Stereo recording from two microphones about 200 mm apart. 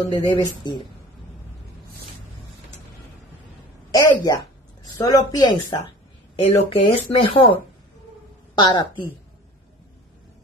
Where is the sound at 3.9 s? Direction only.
20° left (ahead or behind).